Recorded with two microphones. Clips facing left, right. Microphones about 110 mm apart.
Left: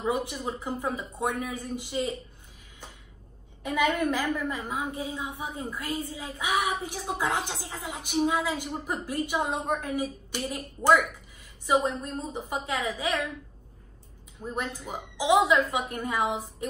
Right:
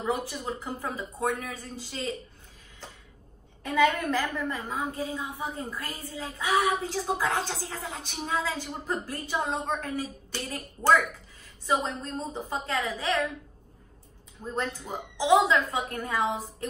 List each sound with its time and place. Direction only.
0.0 s a woman's voice: 20° left (ahead or behind)
3.6 s a woman's voice: 10° left (ahead or behind)
14.4 s a woman's voice: 15° left (ahead or behind)